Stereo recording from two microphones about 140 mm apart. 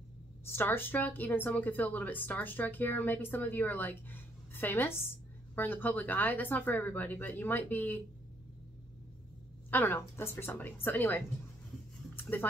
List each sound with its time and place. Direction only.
0.5 s a woman's voice: 15° left (ahead or behind)
9.7 s a woman's voice: 15° left (ahead or behind)
12.2 s a sound: 15° left (ahead or behind)